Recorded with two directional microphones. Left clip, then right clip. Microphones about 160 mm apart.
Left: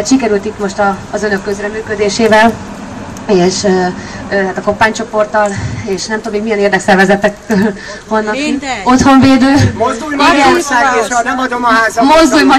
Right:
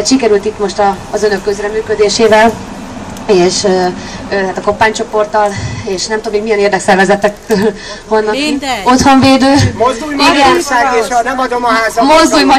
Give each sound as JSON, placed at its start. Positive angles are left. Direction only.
{"t": 0.0, "sound": "a woman's voice", "side_deg": -15}
{"t": 8.4, "sound": "a woman's voice", "side_deg": -45}
{"t": 8.8, "sound": "a woman's voice", "side_deg": -15}